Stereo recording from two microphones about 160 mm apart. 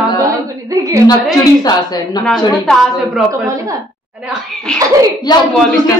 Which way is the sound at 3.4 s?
20° right (ahead or behind).